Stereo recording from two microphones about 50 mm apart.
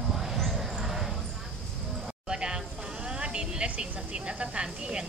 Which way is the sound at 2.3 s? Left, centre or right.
Centre.